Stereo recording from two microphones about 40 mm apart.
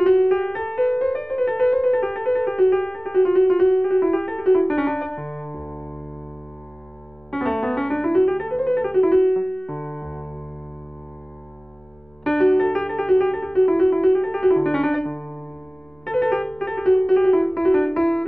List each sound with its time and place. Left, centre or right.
0.0 s music: centre
7.2 s music: centre
12.3 s music: centre
15.0 s piano: centre
16.1 s music: centre